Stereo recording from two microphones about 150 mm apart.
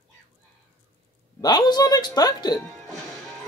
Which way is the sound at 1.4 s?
30° left (ahead or behind).